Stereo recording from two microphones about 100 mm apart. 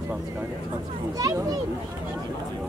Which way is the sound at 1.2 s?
40° right (ahead or behind).